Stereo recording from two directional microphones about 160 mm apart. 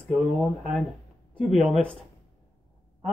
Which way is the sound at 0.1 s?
Centre (ahead or behind).